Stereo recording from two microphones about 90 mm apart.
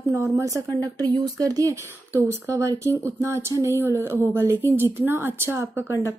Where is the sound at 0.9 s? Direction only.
50° right (ahead or behind).